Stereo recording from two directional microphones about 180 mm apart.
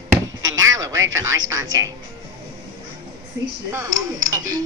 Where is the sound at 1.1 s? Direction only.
15° right (ahead or behind).